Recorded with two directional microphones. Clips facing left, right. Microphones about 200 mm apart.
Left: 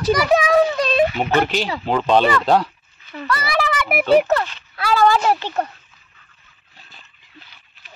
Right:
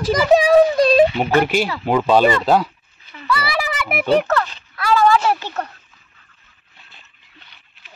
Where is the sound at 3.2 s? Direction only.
5° right (ahead or behind).